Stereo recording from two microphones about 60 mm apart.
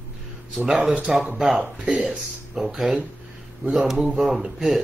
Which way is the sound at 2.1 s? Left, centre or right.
Centre.